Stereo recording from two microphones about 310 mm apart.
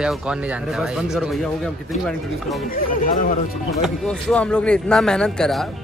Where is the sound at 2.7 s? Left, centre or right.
Left.